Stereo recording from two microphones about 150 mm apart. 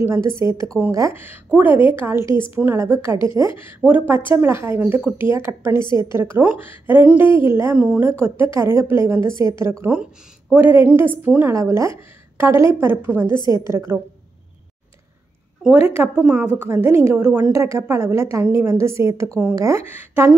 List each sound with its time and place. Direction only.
0.0 s a woman's voice: 15° right (ahead or behind)
16.2 s a woman's voice: 10° right (ahead or behind)